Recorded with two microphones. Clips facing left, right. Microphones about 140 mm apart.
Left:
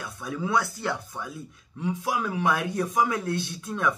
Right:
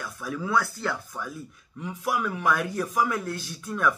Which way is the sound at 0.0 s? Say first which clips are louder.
Left 1 dB; 25° left (ahead or behind).